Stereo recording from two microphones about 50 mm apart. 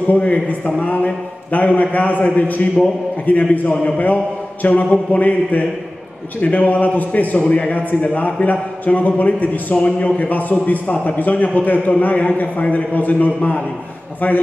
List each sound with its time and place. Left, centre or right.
0.1 s a man's voice: left